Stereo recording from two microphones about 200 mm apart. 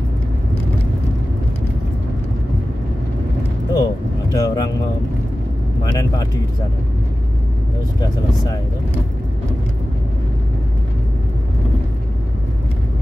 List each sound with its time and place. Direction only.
3.7 s vehicle: 20° left (ahead or behind)